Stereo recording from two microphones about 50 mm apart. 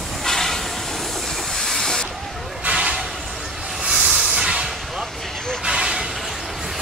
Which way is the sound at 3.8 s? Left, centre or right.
Centre.